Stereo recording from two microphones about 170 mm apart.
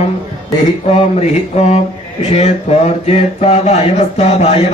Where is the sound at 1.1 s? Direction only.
40° left (ahead or behind).